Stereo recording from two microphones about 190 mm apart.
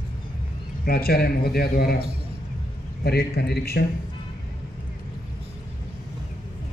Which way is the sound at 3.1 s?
55° left (ahead or behind).